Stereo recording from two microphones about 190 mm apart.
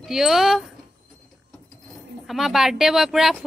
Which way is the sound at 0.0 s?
Centre (ahead or behind).